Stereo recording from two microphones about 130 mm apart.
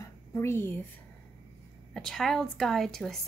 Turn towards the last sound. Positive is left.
turn(degrees=5)  # may be behind; listen again after turning